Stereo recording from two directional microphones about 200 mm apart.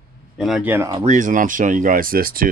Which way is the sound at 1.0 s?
40° right (ahead or behind).